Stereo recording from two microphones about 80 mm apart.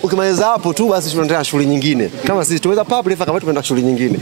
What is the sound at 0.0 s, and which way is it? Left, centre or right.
Speech, centre.